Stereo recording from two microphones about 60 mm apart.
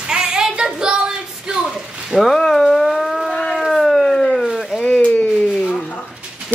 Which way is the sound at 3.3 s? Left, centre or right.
Centre.